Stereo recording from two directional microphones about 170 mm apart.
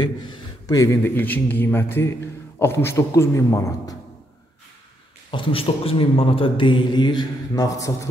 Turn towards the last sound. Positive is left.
turn(degrees=20)  # may be behind; listen again after turning